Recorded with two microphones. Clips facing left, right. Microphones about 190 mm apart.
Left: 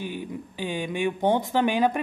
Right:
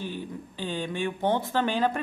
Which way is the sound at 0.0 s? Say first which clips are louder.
Left 2 dB; 15° left (ahead or behind).